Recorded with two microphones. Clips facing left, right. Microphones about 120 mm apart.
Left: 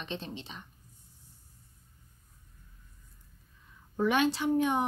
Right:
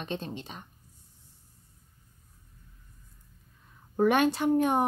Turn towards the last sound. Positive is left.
turn(degrees=-45)  # may be behind; listen again after turning